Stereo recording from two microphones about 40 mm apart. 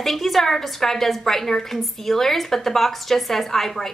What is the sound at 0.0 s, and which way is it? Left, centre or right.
A woman's voice, centre.